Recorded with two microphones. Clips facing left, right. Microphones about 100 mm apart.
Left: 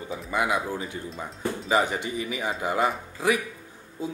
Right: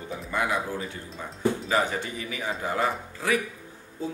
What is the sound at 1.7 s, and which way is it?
Speech, 15° left (ahead or behind).